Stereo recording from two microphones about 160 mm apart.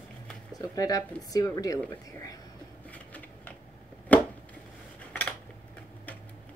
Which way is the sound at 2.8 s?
10° left (ahead or behind).